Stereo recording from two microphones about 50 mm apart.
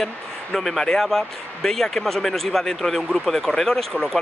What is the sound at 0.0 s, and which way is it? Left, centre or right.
Speech, centre.